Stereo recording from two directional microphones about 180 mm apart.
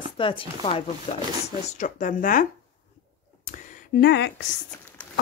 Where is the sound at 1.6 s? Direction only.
45° left (ahead or behind).